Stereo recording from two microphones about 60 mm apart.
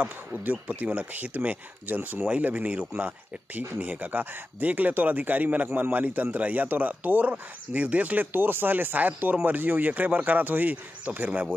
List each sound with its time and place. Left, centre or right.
0.0 s speech: right
2.0 s speech: right
2.2 s speech: right